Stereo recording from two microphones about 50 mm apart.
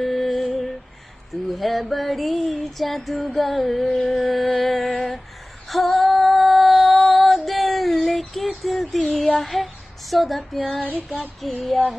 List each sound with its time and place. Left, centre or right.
0.0 s a sound: centre
1.3 s female singing: centre
3.9 s music: centre
5.7 s female singing: centre
6.0 s a sound: centre
7.0 s female singing: centre
9.4 s child singing: centre
10.8 s child singing: left
11.4 s female singing: centre